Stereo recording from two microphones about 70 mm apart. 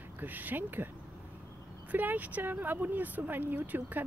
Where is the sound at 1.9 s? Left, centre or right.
Right.